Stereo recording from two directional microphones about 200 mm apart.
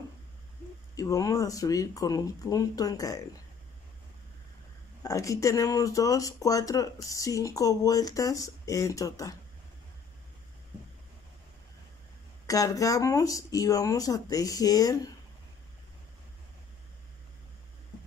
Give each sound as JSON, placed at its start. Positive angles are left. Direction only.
{"t": 0.9, "sound": "speech", "side_deg": 15}
{"t": 5.0, "sound": "speech", "side_deg": 15}
{"t": 12.4, "sound": "speech", "side_deg": 15}